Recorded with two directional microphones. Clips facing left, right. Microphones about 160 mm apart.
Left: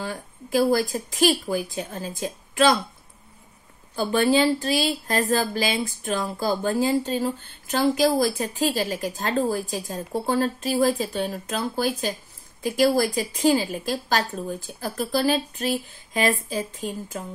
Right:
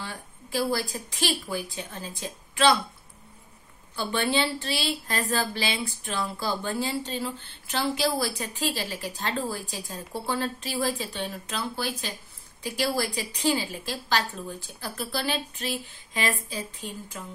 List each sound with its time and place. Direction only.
0.0 s a woman's voice: 45° left (ahead or behind)
3.9 s a woman's voice: 40° left (ahead or behind)